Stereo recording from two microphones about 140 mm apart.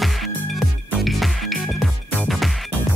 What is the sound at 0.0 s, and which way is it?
Music, centre (ahead or behind).